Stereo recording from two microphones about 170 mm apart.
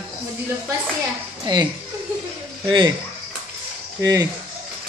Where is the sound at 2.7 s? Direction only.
25° right (ahead or behind).